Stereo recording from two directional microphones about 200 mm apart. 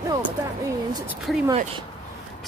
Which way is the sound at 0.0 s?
20° right (ahead or behind).